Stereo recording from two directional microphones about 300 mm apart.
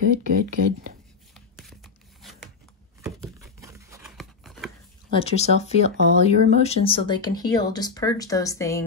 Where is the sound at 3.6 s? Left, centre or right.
Centre.